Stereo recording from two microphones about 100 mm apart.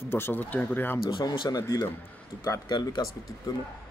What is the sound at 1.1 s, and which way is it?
Speech, 50° left (ahead or behind).